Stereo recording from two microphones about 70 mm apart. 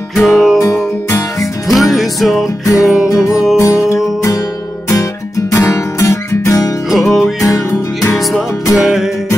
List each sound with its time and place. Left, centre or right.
0.1 s music: centre
2.6 s music: left
5.5 s music: left
6.9 s music: centre
7.4 s music: left
8.8 s music: centre